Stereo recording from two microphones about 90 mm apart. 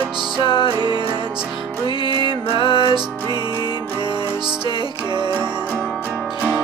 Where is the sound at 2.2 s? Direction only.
80° left.